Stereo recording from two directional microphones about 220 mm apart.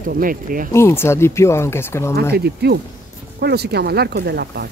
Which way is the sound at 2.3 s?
45° right (ahead or behind).